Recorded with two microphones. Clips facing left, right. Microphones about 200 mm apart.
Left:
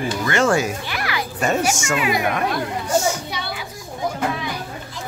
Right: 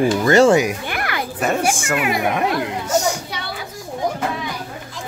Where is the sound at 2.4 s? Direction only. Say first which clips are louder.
Right 2 dB; 15° right (ahead or behind).